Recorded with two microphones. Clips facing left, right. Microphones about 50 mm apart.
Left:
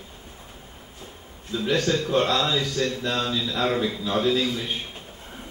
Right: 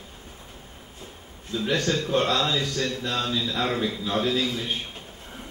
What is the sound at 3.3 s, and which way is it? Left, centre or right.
A man's voice, centre.